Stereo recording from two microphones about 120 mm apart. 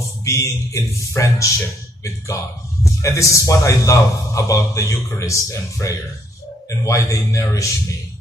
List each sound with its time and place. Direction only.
0.2 s a man's voice: 25° left (ahead or behind)
3.0 s a man's voice: 25° left (ahead or behind)